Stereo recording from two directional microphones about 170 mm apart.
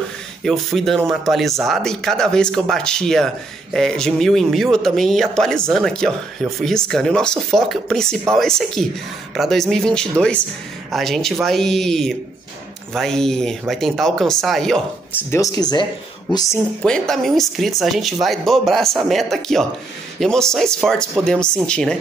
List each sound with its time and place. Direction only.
0.4 s speech: centre (ahead or behind)
15.3 s speech: 20° left (ahead or behind)
16.8 s speech: 5° left (ahead or behind)